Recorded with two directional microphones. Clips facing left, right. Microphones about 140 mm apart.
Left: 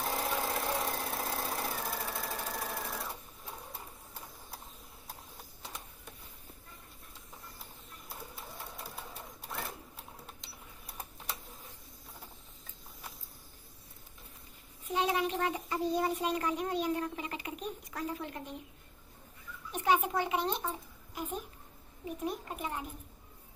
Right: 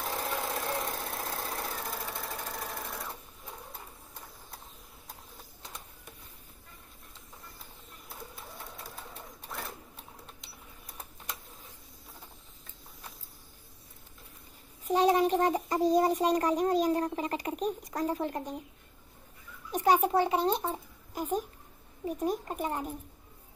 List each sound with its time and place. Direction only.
0.0 s engine: 5° left (ahead or behind)
8.5 s pigeon: 5° left (ahead or behind)
14.9 s a child's voice: 40° right (ahead or behind)
19.7 s a child's voice: 35° right (ahead or behind)